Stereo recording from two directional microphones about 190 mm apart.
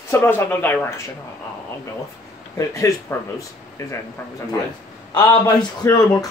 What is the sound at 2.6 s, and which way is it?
Speech, 15° left (ahead or behind).